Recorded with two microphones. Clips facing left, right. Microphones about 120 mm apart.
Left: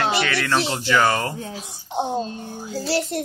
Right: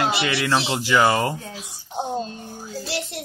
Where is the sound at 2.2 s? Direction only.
20° left (ahead or behind).